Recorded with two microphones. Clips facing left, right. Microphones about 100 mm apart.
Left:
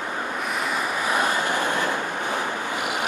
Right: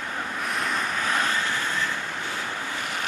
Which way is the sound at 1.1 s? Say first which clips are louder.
Left 4 dB; 15° left (ahead or behind).